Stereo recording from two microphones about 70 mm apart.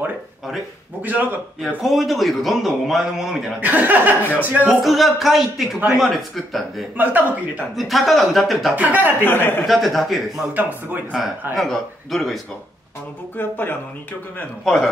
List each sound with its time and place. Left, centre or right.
1.0 s speech: right
1.8 s a man's voice: centre
3.6 s speech: right
4.6 s a man's voice: centre
7.0 s speech: right
7.7 s a man's voice: centre
8.7 s speech: right
9.2 s a man's voice: left
9.7 s a man's voice: centre
10.5 s speech: right
11.5 s a man's voice: centre
13.4 s speech: left
14.6 s a man's voice: centre